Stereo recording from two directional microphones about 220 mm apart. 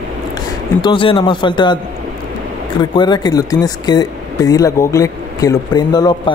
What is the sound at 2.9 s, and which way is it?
Speech, 20° left (ahead or behind).